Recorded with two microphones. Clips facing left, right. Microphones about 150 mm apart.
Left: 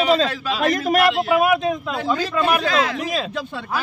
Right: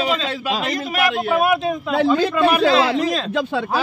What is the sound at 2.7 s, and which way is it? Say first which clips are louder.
Speech: right 4 dB; 30° right (ahead or behind).